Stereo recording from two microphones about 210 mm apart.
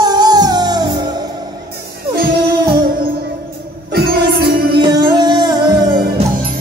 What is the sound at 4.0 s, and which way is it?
Music, 50° right (ahead or behind).